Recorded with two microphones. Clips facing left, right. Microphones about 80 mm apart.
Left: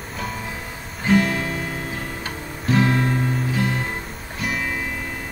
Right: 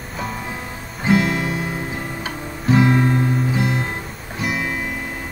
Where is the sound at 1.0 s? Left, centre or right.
Centre.